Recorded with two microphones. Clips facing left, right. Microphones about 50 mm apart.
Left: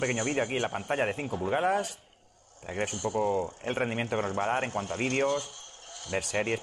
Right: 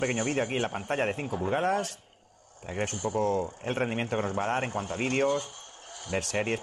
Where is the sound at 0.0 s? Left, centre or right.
Centre.